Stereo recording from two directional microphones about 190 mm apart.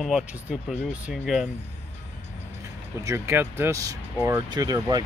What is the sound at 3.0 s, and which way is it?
Speech, 15° right (ahead or behind).